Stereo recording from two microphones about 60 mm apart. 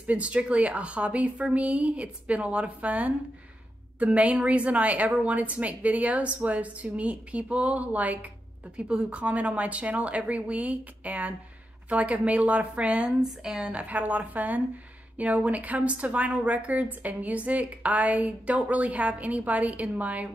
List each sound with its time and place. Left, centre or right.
0.0 s a woman's voice: right
13.7 s a woman's voice: right